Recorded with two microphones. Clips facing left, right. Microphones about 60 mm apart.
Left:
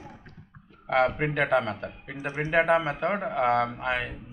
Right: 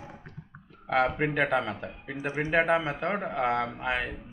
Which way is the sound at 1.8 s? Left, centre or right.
Centre.